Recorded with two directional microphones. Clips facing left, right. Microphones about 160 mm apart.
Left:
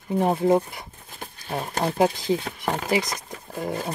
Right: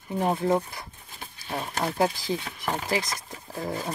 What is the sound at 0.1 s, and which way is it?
Speech, 20° left (ahead or behind).